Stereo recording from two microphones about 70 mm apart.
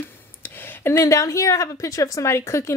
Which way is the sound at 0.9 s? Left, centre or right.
Left.